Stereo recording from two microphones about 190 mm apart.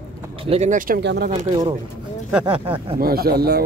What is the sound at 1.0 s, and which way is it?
Speech, 65° right (ahead or behind).